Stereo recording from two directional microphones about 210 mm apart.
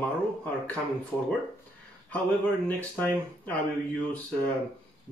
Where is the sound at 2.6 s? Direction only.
5° left (ahead or behind).